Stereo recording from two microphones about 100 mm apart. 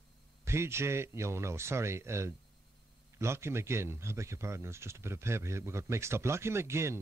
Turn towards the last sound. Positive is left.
turn(degrees=-25)  # may be behind; listen again after turning